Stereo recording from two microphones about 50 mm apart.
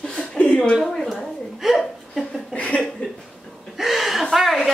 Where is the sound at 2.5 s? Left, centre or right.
Left.